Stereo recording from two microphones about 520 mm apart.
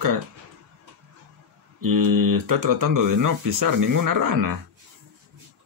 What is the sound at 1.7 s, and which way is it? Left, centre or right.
Speech, right.